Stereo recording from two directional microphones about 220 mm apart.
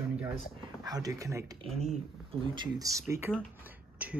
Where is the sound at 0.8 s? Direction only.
15° right (ahead or behind).